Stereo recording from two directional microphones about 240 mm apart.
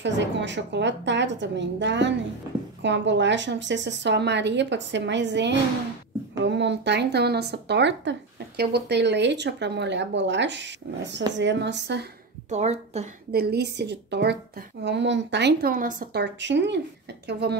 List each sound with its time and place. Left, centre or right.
0.0 s speech: right
12.4 s speech: right
13.3 s speech: right